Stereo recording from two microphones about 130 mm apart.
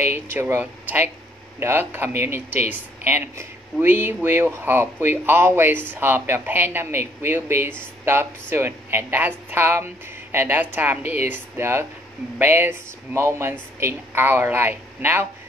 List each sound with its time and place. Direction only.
0.0 s speech: 15° right (ahead or behind)